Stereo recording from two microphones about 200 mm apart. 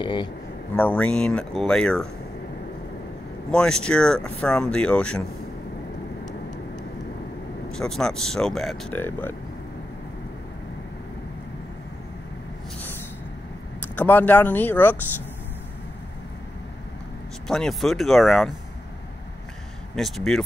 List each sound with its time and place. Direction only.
0.0 s speech: 25° left (ahead or behind)
0.7 s speech: 5° left (ahead or behind)
3.5 s speech: 5° left (ahead or behind)
7.7 s speech: 5° left (ahead or behind)
13.7 s speech: 10° left (ahead or behind)
17.5 s speech: centre (ahead or behind)
20.0 s speech: centre (ahead or behind)